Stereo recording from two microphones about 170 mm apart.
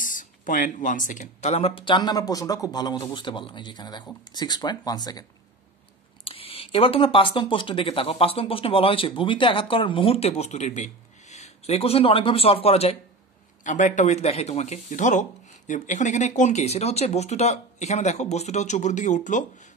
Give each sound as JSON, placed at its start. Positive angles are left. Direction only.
{"t": 0.0, "sound": "speech", "side_deg": 50}
{"t": 6.2, "sound": "speech", "side_deg": 35}
{"t": 13.7, "sound": "speech", "side_deg": 45}